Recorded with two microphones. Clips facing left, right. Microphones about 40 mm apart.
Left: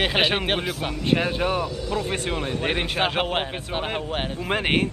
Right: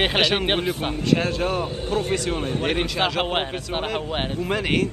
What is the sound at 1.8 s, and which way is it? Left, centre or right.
Speech, right.